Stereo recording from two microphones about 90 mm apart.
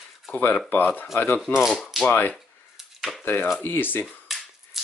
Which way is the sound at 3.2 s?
25° left (ahead or behind).